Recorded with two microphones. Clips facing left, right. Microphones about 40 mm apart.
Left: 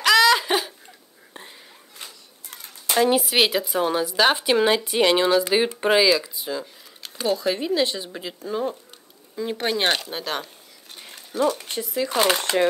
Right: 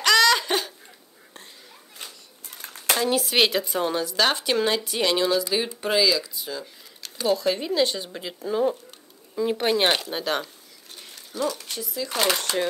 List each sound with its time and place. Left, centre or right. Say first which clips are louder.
0.0 s a sound: left 2 dB; centre
3.0 s speech: left 6 dB; centre
3.3 s speech: left 1 dB; centre
11.1 s speech: left 5 dB; left
12.1 s speech: left 3 dB; centre
12.4 s speech: left 4 dB; left